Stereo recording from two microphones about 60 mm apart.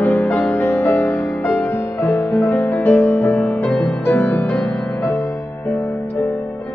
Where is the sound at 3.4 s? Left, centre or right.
Left.